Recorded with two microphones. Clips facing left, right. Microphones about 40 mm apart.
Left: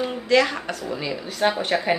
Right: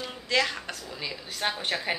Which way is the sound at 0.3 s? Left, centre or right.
Centre.